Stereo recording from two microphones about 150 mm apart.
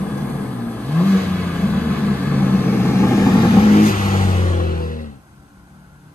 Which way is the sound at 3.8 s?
60° left (ahead or behind).